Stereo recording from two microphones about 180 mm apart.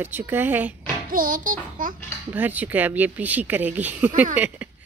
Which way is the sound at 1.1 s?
50° right (ahead or behind).